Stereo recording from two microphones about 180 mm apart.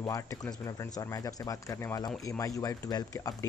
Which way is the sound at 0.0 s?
20° left (ahead or behind).